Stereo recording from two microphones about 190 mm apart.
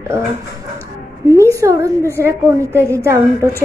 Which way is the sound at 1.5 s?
15° right (ahead or behind).